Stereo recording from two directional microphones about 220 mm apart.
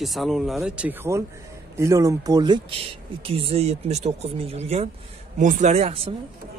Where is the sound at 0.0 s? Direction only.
Centre (ahead or behind); by 6.1 s 30° right (ahead or behind).